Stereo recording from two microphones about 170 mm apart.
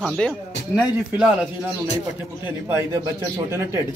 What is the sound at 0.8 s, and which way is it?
Speech, 5° right (ahead or behind).